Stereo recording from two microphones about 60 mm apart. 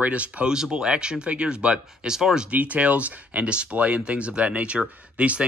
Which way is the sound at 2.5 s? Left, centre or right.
Right.